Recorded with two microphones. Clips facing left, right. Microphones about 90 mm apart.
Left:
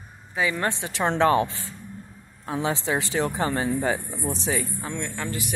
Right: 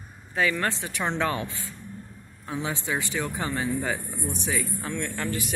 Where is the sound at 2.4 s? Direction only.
35° left (ahead or behind).